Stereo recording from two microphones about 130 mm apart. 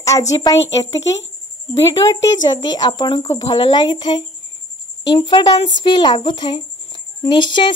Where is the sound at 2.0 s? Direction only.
30° left (ahead or behind).